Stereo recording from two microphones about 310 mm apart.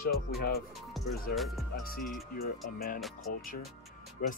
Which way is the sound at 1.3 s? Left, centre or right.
Centre.